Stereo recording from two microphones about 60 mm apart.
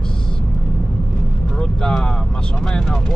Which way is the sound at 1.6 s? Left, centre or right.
Centre.